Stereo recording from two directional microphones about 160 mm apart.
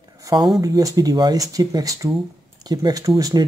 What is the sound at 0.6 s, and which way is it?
Speech, 20° right (ahead or behind).